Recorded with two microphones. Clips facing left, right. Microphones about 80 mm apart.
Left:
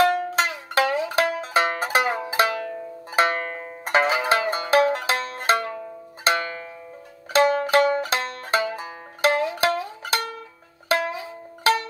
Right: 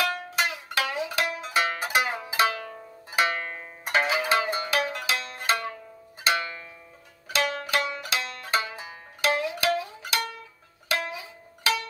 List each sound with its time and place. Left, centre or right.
0.0 s music: left
3.5 s zither: left
7.3 s music: left